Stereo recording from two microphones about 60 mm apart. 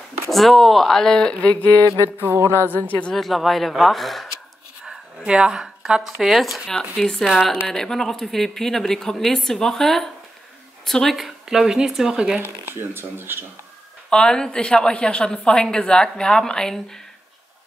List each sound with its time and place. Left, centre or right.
0.3 s a woman's voice: centre
1.9 s mantra: left
2.5 s a woman's voice: left
3.1 s speech: centre
4.8 s a woman's voice: centre
11.1 s speech: centre
12.4 s speech: right
14.1 s a woman's voice: centre